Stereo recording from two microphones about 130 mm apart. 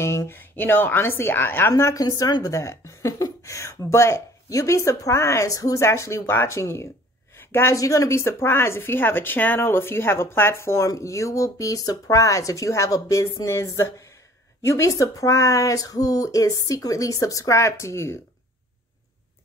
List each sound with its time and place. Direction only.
0.0 s a woman's voice: 20° left (ahead or behind)